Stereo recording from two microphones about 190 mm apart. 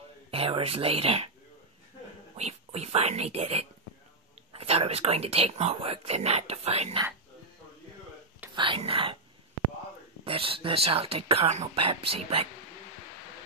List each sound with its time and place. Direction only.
0.3 s speech: 30° right (ahead or behind)
2.3 s speech: 35° right (ahead or behind)
8.5 s speech: 25° right (ahead or behind)
10.2 s speech: 30° right (ahead or behind)